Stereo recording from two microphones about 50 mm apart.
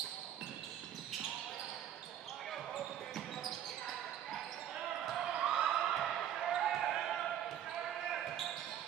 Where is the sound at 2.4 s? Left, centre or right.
Centre.